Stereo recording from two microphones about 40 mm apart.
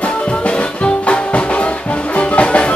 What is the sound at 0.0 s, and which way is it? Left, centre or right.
Music, left.